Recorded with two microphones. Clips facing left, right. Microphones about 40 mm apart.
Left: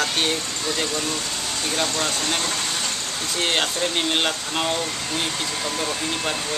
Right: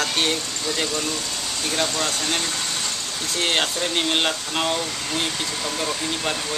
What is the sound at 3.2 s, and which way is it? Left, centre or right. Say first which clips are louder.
Speech: right 1 dB; centre.